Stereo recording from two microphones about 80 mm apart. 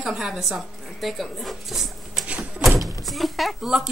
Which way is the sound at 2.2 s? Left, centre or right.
Centre.